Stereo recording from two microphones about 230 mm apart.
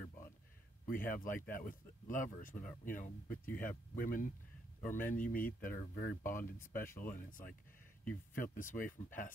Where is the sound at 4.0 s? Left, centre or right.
Left.